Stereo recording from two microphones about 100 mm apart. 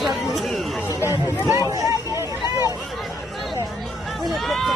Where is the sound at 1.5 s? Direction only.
30° right (ahead or behind).